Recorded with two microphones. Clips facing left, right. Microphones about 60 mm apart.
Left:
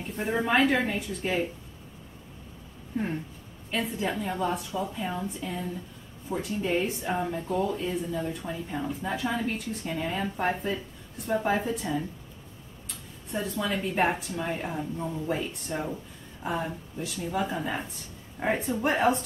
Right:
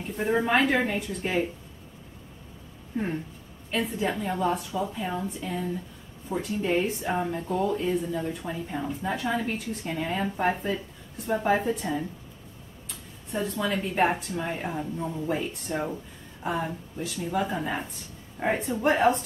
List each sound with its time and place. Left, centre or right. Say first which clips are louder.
0.0 s speech: right 3 dB; centre
3.7 s speech: right 2 dB; centre
15.7 s speech: right 3 dB; centre